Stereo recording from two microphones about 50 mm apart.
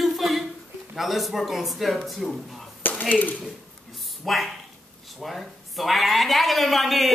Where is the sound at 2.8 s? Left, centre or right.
Left.